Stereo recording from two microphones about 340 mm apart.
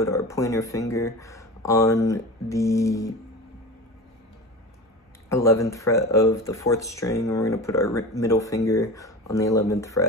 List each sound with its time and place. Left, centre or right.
0.0 s speech: centre
5.3 s speech: centre